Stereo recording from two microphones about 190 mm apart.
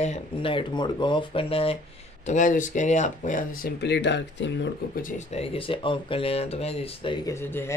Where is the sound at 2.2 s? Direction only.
40° left (ahead or behind); by 4.7 s 70° left (ahead or behind).